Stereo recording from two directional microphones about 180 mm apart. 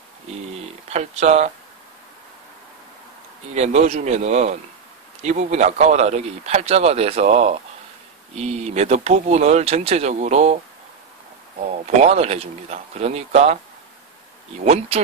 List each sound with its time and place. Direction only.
0.8 s speech: 35° right (ahead or behind)
3.5 s speech: 40° right (ahead or behind)
11.8 s speech: 35° right (ahead or behind)
14.6 s speech: 40° right (ahead or behind)